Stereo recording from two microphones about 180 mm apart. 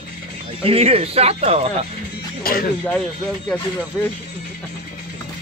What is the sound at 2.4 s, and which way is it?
Speech, 55° left (ahead or behind).